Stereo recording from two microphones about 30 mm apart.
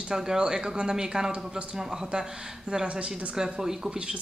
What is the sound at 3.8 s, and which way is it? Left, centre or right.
Speech, right.